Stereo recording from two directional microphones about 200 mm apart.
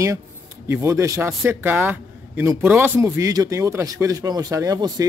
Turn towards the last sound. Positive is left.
turn(degrees=-15)  # may be behind; listen again after turning